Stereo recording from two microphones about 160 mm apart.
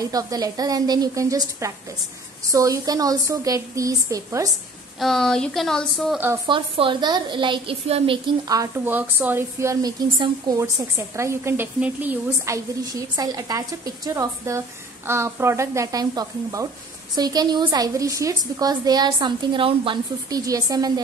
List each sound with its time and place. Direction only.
0.0 s a woman's voice: 25° right (ahead or behind)
5.0 s speech: 5° left (ahead or behind)
6.1 s speech: 10° right (ahead or behind)
6.4 s a woman's voice: 30° right (ahead or behind)
8.5 s a woman's voice: 20° right (ahead or behind)
12.9 s a woman's voice: 25° right (ahead or behind)